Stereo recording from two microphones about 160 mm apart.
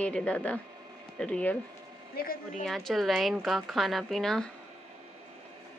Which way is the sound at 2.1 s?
65° left (ahead or behind).